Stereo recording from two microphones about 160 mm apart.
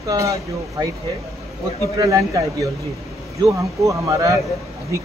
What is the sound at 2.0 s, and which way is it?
Speech, 20° right (ahead or behind).